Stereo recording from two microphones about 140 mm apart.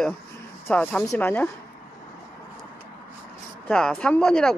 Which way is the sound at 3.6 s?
5° left (ahead or behind).